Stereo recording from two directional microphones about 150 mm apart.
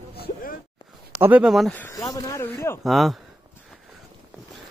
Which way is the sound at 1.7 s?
10° left (ahead or behind).